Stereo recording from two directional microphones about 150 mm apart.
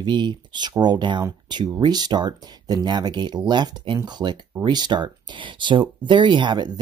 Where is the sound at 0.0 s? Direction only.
30° right (ahead or behind).